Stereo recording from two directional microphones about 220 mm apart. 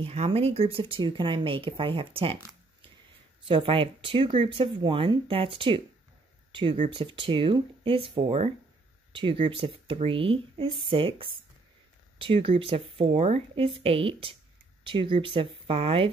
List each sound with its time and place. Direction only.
0.0 s speech: 25° right (ahead or behind)
3.4 s speech: 25° right (ahead or behind)